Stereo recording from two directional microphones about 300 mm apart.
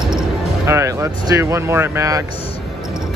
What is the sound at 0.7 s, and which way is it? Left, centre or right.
Speech, centre.